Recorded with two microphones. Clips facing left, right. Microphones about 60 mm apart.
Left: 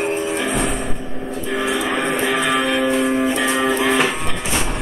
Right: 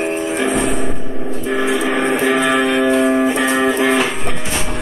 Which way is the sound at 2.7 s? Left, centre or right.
Right.